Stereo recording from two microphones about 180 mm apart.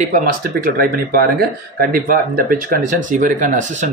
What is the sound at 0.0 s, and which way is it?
Speech, 45° right (ahead or behind).